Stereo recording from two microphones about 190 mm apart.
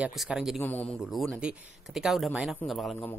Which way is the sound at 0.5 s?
10° left (ahead or behind).